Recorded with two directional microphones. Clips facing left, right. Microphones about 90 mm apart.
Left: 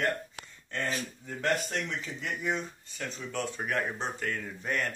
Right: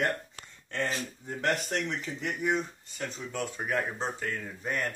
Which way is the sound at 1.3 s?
30° right (ahead or behind).